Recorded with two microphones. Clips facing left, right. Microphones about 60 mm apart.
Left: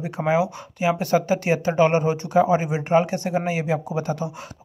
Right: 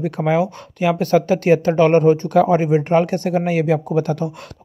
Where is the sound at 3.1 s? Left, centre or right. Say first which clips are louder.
Right 5 dB; right.